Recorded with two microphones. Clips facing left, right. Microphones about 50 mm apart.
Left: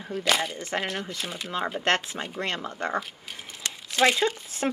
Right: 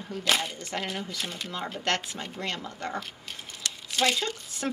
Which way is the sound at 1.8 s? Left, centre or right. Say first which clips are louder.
Left 2 dB; left.